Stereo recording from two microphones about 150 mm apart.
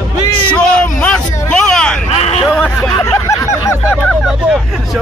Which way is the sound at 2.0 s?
45° left (ahead or behind).